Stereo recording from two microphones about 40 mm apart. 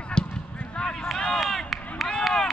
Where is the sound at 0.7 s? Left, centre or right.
Left.